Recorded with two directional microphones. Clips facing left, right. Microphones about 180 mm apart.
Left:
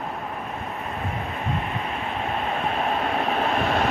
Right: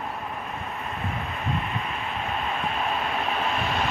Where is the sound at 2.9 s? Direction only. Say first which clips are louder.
Left 4 dB; 45° left (ahead or behind).